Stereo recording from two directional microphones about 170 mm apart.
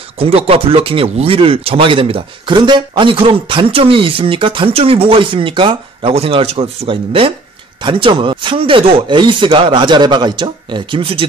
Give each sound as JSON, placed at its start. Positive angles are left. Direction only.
{"t": 0.2, "sound": "speech", "side_deg": -35}